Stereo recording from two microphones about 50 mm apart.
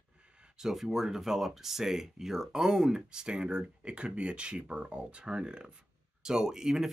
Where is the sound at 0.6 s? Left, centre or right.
Centre.